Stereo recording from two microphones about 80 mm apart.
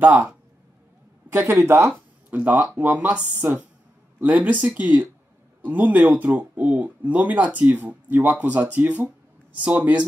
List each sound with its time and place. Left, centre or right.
0.0 s speech: centre
1.3 s speech: right
2.3 s speech: centre